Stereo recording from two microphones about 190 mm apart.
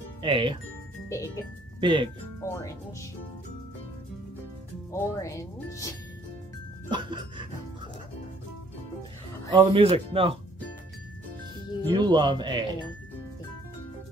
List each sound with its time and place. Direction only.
0.2 s speech: 25° right (ahead or behind)
1.0 s speech: 15° left (ahead or behind)
1.8 s speech: 25° right (ahead or behind)
2.4 s speech: 15° left (ahead or behind)
4.9 s speech: 15° left (ahead or behind)
6.9 s speech: 25° right (ahead or behind)
9.5 s speech: 25° right (ahead or behind)
11.9 s speech: 25° right (ahead or behind)